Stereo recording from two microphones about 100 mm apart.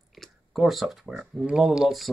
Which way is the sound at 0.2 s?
Centre (ahead or behind).